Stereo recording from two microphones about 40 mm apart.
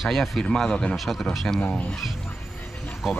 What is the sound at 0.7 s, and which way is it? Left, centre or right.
Speech, left.